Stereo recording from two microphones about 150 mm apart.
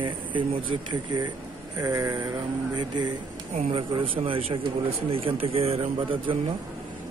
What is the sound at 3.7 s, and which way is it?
Speech, 35° right (ahead or behind).